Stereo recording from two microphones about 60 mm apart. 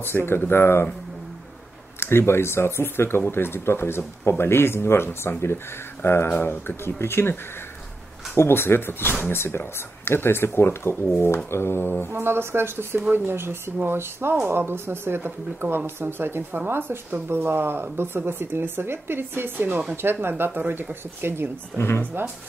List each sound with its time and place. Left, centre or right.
0.0 s speech: left
2.0 s speech: left
8.4 s speech: left
12.1 s speech: right
21.7 s speech: left